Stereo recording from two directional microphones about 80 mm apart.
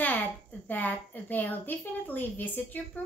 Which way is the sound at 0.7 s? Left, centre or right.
Left.